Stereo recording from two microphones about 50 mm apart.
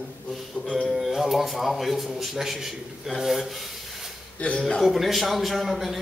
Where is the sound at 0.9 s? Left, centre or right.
Centre.